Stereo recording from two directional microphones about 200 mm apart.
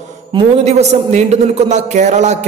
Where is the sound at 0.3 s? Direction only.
35° right (ahead or behind).